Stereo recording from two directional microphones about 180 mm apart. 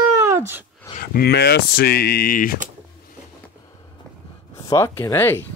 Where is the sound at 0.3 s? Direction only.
15° right (ahead or behind).